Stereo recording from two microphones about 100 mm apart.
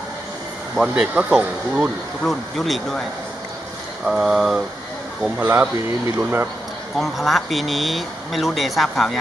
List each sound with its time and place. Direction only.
0.7 s speech: 5° right (ahead or behind)
4.0 s speech: 5° right (ahead or behind)
5.4 s speech: 20° right (ahead or behind)
7.0 s speech: centre (ahead or behind)